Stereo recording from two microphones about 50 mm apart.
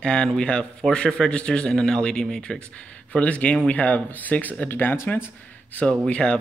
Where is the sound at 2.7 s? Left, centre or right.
Left.